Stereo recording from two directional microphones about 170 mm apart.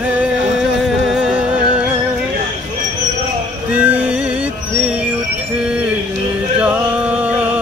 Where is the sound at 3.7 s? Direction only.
10° right (ahead or behind).